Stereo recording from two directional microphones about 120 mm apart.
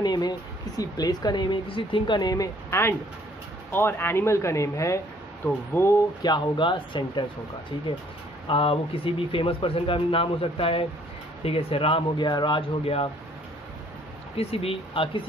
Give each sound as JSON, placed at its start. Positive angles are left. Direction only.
{"t": 0.0, "sound": "speech", "side_deg": 35}
{"t": 6.2, "sound": "speech", "side_deg": 40}
{"t": 8.5, "sound": "a man's voice", "side_deg": 50}
{"t": 14.3, "sound": "a man's voice", "side_deg": 55}